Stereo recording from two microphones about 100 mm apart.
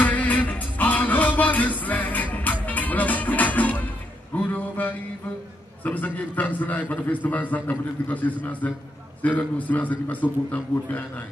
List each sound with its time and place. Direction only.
0.0 s music: 15° left (ahead or behind)
4.4 s a sound: 15° left (ahead or behind)
5.9 s a man's voice: 15° left (ahead or behind)